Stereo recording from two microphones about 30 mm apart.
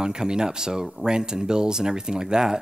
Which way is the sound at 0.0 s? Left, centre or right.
Right.